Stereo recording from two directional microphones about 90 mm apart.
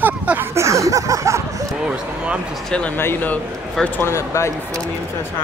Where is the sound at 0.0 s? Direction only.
20° right (ahead or behind).